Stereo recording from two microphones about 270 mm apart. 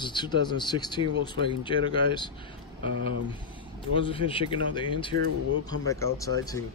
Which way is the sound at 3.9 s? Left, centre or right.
Centre.